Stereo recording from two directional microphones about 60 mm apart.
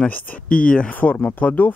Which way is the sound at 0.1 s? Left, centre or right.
Left.